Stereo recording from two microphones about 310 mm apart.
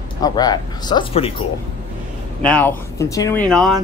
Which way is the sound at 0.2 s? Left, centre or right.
Centre.